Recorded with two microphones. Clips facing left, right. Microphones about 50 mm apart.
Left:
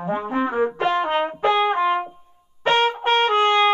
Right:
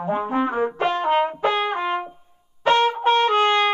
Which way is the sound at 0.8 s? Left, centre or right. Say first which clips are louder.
Right 3 dB; left.